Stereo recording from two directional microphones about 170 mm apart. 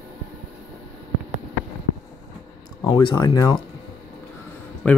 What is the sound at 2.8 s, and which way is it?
Speech, 25° left (ahead or behind).